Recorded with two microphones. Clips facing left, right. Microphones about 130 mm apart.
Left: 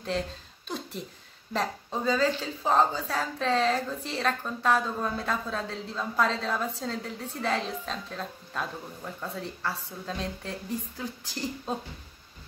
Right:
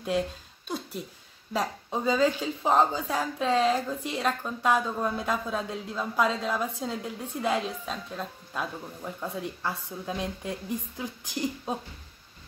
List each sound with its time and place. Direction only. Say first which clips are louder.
0.7 s a woman's voice: right 1 dB; 5° right (ahead or behind)